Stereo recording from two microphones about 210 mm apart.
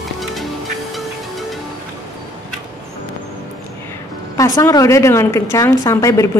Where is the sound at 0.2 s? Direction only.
Centre (ahead or behind).